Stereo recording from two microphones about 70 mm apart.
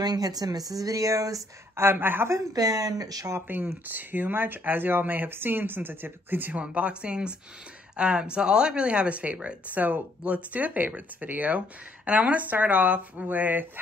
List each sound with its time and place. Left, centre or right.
0.0 s speech: right
1.8 s speech: right
2.5 s speech: right
3.3 s speech: right
6.6 s speech: centre